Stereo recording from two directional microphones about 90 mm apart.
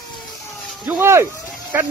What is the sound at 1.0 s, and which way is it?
Speech, 30° right (ahead or behind).